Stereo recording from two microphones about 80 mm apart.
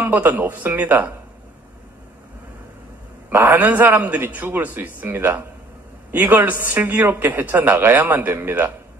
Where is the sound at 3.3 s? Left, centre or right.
Right.